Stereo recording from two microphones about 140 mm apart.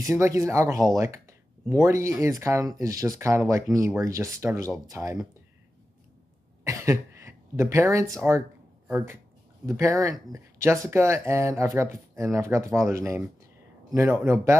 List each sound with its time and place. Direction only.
0.1 s speech: 20° right (ahead or behind)
6.6 s throat clearing: 20° right (ahead or behind)
9.7 s speech: 20° right (ahead or behind)